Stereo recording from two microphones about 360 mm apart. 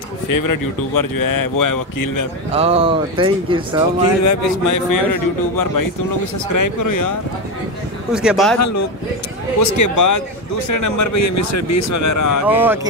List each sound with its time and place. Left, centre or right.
0.3 s speech: left
2.5 s speech: centre
4.0 s speech: left
8.1 s speech: centre
8.5 s speech: left
12.4 s speech: centre